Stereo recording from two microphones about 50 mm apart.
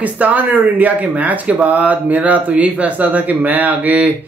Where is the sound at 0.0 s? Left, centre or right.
Right.